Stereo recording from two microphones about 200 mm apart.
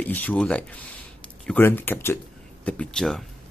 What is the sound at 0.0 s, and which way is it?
Speech, 10° left (ahead or behind).